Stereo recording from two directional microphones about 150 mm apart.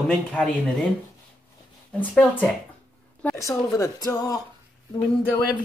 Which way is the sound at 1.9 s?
10° left (ahead or behind).